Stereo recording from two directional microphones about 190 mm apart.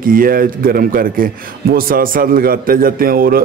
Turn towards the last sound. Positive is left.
turn(degrees=-50)  # may be behind; listen again after turning